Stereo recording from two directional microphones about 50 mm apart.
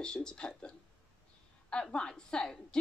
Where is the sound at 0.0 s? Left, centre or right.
Centre.